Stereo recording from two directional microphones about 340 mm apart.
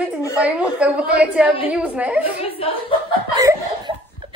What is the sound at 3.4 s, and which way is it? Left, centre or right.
Laughter, centre.